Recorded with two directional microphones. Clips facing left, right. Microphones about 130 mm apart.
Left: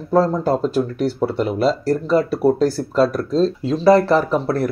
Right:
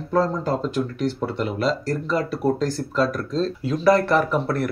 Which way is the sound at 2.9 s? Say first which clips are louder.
Left 5 dB; 35° left (ahead or behind).